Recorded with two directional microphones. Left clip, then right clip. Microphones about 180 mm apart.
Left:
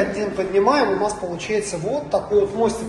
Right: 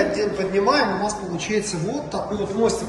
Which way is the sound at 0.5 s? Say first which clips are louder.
Left 2 dB; 10° left (ahead or behind).